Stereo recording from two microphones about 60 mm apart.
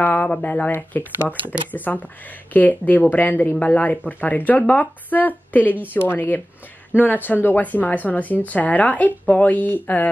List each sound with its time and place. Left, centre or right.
0.0 s speech: left